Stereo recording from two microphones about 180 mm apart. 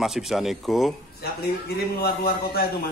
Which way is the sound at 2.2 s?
60° left (ahead or behind).